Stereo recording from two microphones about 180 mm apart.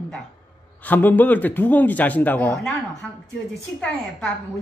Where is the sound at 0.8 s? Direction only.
10° left (ahead or behind).